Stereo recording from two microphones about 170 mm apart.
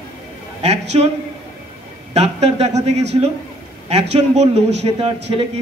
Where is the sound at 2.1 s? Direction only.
40° right (ahead or behind).